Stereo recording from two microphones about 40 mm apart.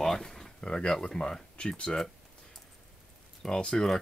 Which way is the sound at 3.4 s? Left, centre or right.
Centre.